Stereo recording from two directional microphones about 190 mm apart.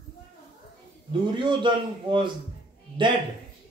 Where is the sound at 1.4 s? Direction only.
25° right (ahead or behind).